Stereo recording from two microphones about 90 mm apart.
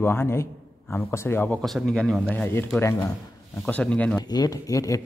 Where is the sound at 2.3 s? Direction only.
20° left (ahead or behind).